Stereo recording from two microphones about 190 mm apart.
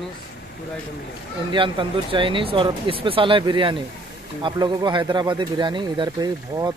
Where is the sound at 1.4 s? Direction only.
25° right (ahead or behind).